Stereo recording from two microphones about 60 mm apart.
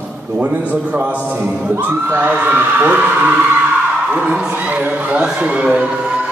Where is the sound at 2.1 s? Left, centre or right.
Right.